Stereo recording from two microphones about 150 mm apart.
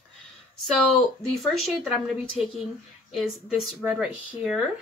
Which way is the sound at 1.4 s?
Centre (ahead or behind).